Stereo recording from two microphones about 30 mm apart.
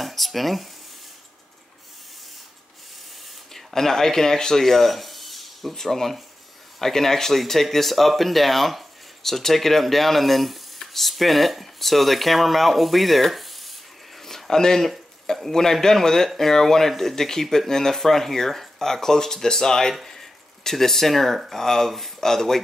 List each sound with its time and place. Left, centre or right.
0.0 s a sound: centre
3.5 s a man's voice: centre
4.6 s speech: centre
14.3 s speech: centre
19.9 s speech: centre